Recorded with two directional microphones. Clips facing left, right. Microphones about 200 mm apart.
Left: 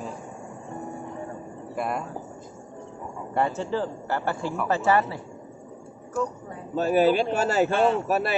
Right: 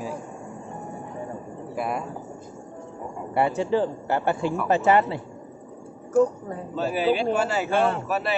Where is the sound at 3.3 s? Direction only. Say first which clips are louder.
Right 4 dB; 15° right (ahead or behind).